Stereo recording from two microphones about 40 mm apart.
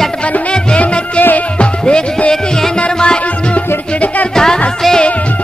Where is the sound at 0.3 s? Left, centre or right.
Left.